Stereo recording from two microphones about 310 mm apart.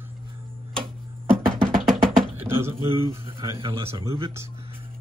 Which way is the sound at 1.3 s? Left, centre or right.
Centre.